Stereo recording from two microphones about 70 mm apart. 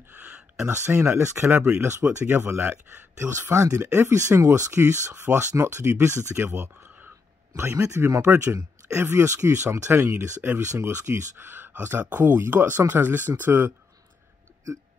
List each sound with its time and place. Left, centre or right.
0.1 s a sound: centre
0.6 s speech: right
2.2 s speech: right
4.1 s speech: right
5.1 s speech: right
10.7 s speech: right
11.3 s speech: right